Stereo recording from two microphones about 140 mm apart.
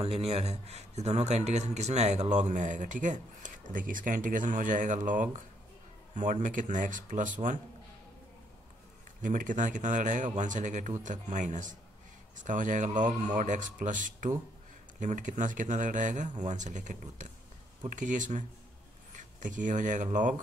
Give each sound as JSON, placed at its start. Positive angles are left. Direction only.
{"t": 0.0, "sound": "speech", "side_deg": -45}
{"t": 9.2, "sound": "speech", "side_deg": -70}